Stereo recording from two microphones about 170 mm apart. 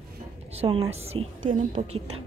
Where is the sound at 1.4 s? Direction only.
45° right (ahead or behind).